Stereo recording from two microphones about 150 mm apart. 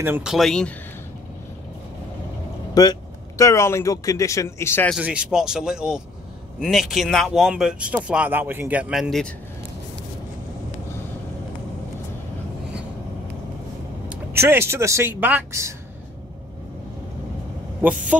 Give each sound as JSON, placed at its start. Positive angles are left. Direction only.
{"t": 0.2, "sound": "speech", "side_deg": 0}
{"t": 2.7, "sound": "speech", "side_deg": 25}
{"t": 4.9, "sound": "speech", "side_deg": -5}
{"t": 14.0, "sound": "speech", "side_deg": -15}
{"t": 17.8, "sound": "speech", "side_deg": -15}